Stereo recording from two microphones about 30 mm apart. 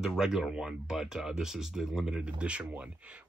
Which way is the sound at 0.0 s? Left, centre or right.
Centre.